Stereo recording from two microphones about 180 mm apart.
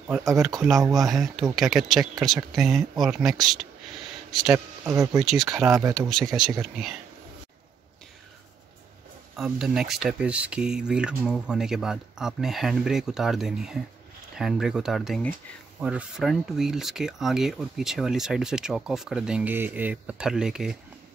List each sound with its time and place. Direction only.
0.9 s speech: centre (ahead or behind)
4.8 s speech: 20° right (ahead or behind)
5.2 s speech: centre (ahead or behind)
9.4 s speech: centre (ahead or behind)